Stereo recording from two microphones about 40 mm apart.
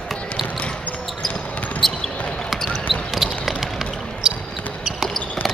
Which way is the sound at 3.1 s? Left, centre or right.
Centre.